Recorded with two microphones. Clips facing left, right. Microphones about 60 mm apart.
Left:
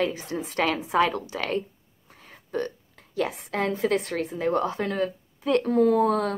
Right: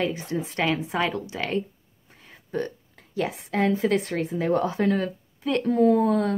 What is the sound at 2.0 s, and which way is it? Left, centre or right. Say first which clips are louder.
Whispering: even; centre.